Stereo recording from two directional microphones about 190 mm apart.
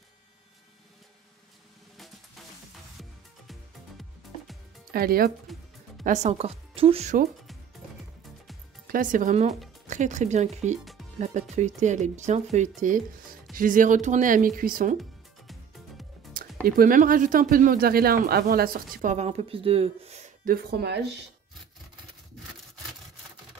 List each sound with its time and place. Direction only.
4.9 s speech: 50° right (ahead or behind)
6.0 s speech: 40° right (ahead or behind)
8.8 s speech: 45° right (ahead or behind)
11.1 s music: 40° right (ahead or behind)
11.5 s speech: 40° right (ahead or behind)
16.6 s speech: 50° right (ahead or behind)